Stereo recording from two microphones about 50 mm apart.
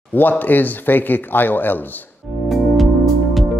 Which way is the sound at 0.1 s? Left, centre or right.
Left.